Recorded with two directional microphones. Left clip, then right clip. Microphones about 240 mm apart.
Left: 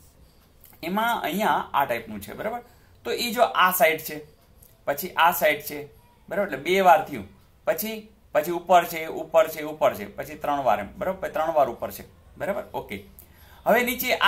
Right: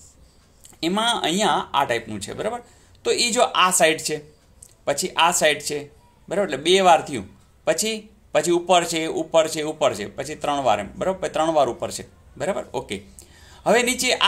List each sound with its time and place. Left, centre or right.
0.7 s speech: right
7.6 s speech: right
8.5 s speech: right
8.7 s speech: right